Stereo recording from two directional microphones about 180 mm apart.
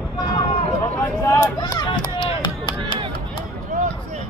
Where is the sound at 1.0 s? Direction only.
15° left (ahead or behind).